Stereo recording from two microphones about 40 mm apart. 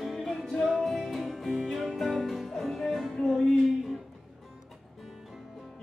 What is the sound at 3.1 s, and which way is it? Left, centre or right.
Music, centre.